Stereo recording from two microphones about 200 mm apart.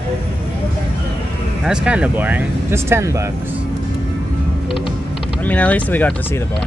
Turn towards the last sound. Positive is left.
turn(degrees=10)  # may be behind; listen again after turning